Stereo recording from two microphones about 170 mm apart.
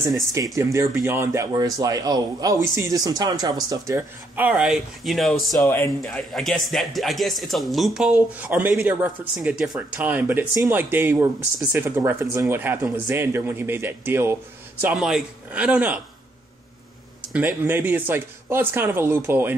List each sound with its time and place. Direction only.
0.1 s speech: 20° right (ahead or behind)
4.5 s speech: 5° right (ahead or behind)
5.6 s a man's voice: 15° left (ahead or behind); by 15.0 s 15° right (ahead or behind)
15.0 s a man's voice: 5° right (ahead or behind)
17.6 s a man's voice: 10° right (ahead or behind)